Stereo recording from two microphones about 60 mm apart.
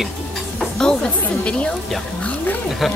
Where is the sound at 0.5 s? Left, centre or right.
Centre.